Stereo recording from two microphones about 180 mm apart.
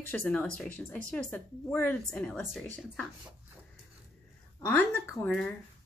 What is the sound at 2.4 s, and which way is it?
Speech, centre (ahead or behind).